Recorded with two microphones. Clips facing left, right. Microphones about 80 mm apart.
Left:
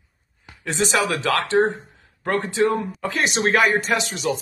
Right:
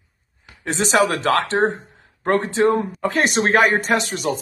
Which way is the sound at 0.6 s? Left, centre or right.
Right.